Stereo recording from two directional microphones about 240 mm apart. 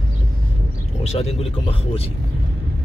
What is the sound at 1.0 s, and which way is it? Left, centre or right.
Speech, left.